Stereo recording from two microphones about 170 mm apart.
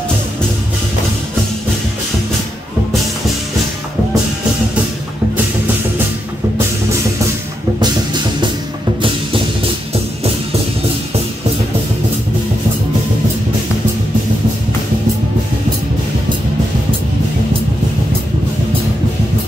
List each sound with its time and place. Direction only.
7.8 s music: 25° right (ahead or behind)